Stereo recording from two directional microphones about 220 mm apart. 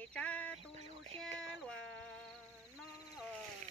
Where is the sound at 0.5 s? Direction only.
30° right (ahead or behind).